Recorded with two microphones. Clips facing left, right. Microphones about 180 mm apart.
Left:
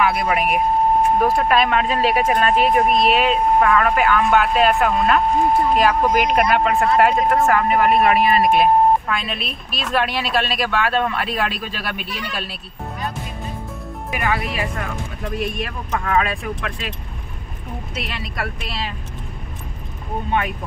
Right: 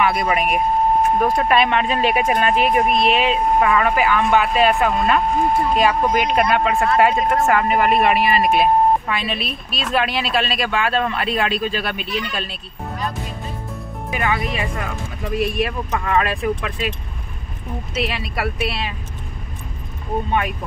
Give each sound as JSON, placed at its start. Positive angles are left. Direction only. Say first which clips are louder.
{"t": 0.0, "sound": "speech", "louder": "even", "side_deg": 0}
{"t": 14.2, "sound": "speech", "louder": "even", "side_deg": 0}
{"t": 17.9, "sound": "speech", "louder": "right 6 dB", "side_deg": -5}